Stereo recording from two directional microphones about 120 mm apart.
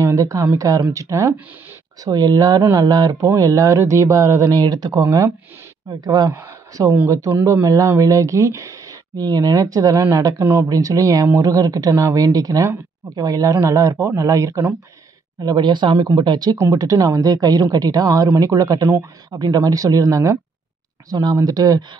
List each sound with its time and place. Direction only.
0.0 s speech: 30° right (ahead or behind)
10.4 s speech: 15° right (ahead or behind)
10.7 s speech: 30° right (ahead or behind)
15.4 s speech: 40° right (ahead or behind)